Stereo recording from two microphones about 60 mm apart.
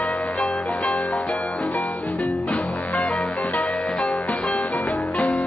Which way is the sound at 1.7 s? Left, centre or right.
Left.